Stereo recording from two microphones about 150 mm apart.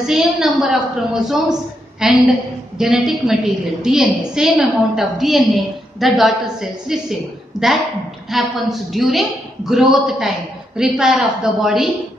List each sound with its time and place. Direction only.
0.0 s a woman's voice: 5° right (ahead or behind)